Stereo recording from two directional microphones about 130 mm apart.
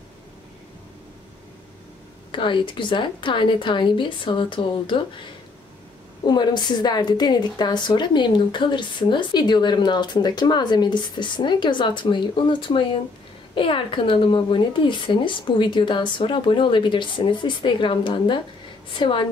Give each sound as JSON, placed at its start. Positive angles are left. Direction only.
{"t": 2.3, "sound": "a woman's voice", "side_deg": 40}
{"t": 6.2, "sound": "a woman's voice", "side_deg": 35}